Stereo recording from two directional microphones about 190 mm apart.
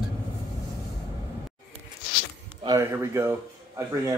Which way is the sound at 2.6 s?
15° right (ahead or behind).